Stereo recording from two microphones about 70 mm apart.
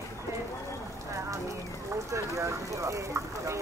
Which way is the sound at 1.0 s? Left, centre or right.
Right.